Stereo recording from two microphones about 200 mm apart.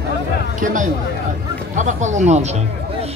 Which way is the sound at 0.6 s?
40° right (ahead or behind).